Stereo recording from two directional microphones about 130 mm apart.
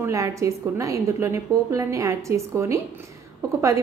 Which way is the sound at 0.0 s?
25° right (ahead or behind).